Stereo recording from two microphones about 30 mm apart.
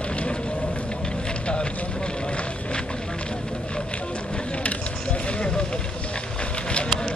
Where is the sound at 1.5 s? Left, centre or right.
Left.